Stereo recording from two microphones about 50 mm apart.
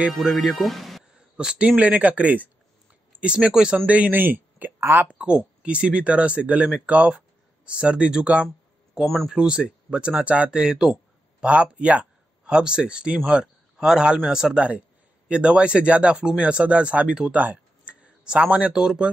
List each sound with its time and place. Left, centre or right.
0.1 s speech: centre
1.3 s speech: right
1.8 s speech: right
4.1 s speech: right
4.7 s speech: right
5.6 s speech: right
9.0 s speech: centre
9.3 s speech: centre
10.6 s speech: centre
11.4 s speech: right
17.4 s a sound: right
18.2 s speech: right
18.7 s speech: centre